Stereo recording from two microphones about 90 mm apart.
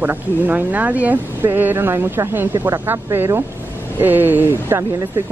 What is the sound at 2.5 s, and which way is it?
Speech, 40° right (ahead or behind).